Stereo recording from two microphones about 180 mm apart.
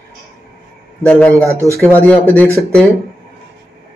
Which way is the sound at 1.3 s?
15° right (ahead or behind).